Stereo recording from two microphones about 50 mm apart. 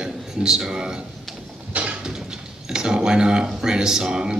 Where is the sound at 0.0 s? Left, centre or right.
Centre.